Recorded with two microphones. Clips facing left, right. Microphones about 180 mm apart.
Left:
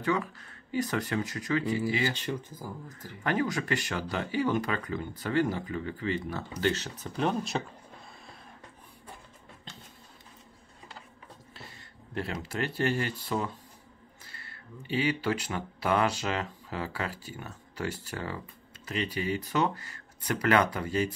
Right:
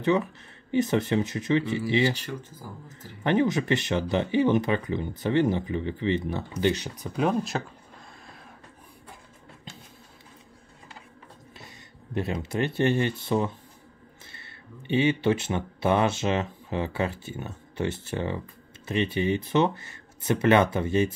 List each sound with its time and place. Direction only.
0.0 s speech: 20° right (ahead or behind)
3.3 s speech: 20° right (ahead or behind)
7.2 s speech: centre (ahead or behind)
11.5 s speech: 20° right (ahead or behind)
14.3 s a sound: 25° right (ahead or behind)
15.2 s speech: 25° right (ahead or behind)